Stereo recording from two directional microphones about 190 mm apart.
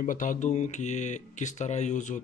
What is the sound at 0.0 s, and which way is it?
Speech, 45° left (ahead or behind).